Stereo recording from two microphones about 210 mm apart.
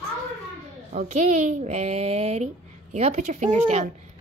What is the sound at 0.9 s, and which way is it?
A woman's voice, 35° right (ahead or behind).